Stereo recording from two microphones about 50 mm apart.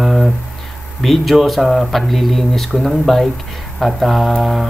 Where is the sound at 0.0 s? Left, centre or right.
Centre.